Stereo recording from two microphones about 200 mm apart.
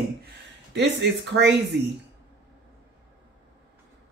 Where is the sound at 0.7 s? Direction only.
60° right (ahead or behind).